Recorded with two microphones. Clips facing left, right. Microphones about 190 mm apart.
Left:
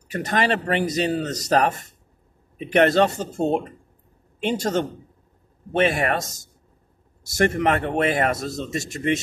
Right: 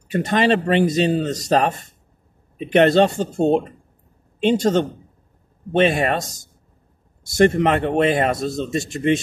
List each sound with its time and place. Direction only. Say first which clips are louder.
0.1 s speech: right 5 dB; 25° right (ahead or behind)
7.3 s speech: right 4 dB; 25° right (ahead or behind)